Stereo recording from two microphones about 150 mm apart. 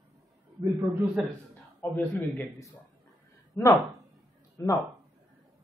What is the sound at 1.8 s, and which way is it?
A man's voice, 15° left (ahead or behind).